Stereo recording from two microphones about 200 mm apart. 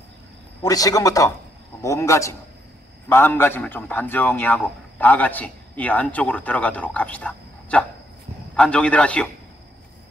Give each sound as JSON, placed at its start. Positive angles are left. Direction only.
{"t": 0.6, "sound": "a man's voice", "side_deg": 15}